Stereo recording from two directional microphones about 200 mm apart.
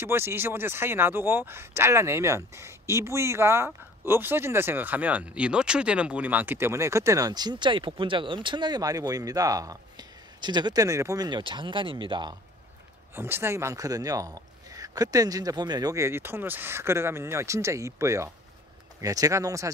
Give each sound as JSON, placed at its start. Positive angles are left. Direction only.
{"t": 0.0, "sound": "speech", "side_deg": -10}
{"t": 13.1, "sound": "speech", "side_deg": -10}